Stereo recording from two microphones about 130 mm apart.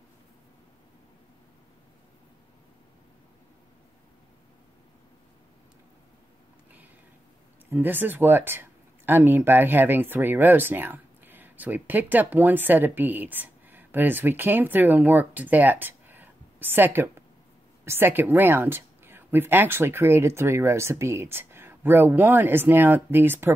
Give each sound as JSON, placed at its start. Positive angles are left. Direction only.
{"t": 7.7, "sound": "a woman's voice", "side_deg": -15}